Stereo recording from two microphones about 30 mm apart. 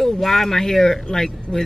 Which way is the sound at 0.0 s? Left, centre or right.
Centre.